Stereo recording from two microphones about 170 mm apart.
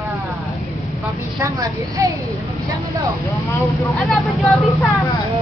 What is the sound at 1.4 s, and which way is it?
Speech, 20° right (ahead or behind).